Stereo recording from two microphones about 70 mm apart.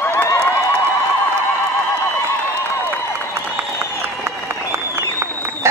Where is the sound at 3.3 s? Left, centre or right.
Right.